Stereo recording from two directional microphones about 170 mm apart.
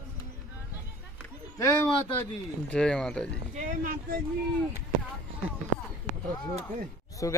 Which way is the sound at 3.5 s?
55° right (ahead or behind).